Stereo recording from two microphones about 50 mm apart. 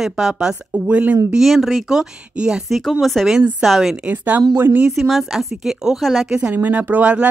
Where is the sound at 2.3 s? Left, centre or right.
Right.